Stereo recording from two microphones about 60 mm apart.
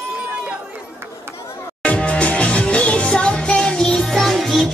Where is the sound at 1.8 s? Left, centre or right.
Left.